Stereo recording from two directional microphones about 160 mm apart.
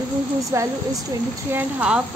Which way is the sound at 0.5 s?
20° right (ahead or behind).